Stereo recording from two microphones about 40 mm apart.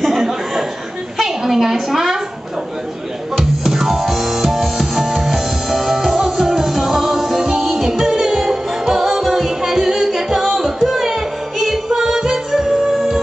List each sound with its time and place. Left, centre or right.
0.0 s a sound: centre
1.4 s a woman's voice: centre
3.3 s music: centre